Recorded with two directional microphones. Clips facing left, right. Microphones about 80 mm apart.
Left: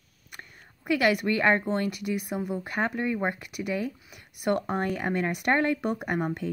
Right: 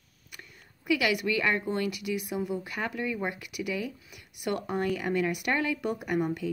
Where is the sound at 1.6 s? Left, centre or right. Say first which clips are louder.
Left 2 dB; left.